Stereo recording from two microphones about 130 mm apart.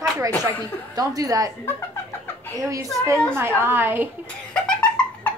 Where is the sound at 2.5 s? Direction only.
25° right (ahead or behind).